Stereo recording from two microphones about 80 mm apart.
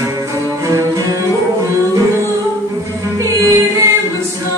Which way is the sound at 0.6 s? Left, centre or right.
Right.